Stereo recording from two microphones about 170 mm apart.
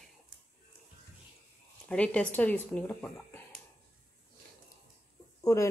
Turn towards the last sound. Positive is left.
turn(degrees=20)  # may be behind; listen again after turning